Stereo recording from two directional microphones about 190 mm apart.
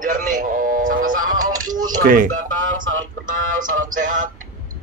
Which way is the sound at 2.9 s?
90° right.